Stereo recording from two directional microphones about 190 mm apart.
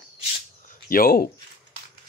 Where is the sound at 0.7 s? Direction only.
50° left (ahead or behind).